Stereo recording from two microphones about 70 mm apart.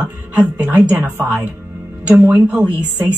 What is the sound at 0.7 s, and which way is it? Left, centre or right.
Speech, right.